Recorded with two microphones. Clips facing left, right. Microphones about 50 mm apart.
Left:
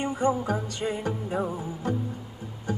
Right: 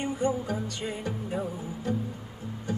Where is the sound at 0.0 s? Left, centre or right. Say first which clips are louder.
Left 3 dB; left.